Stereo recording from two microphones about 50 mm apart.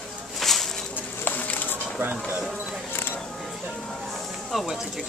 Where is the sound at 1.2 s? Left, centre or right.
Left.